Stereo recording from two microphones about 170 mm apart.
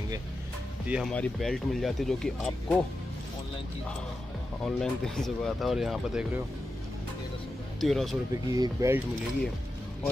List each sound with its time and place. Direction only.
0.8 s speech: 5° right (ahead or behind)
1.1 s speech: 5° left (ahead or behind)
4.6 s speech: 5° left (ahead or behind)
7.8 s speech: centre (ahead or behind)
8.3 s speech: 20° right (ahead or behind)